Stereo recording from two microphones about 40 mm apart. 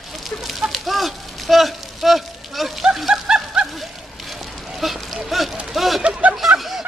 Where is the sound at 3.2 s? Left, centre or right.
Right.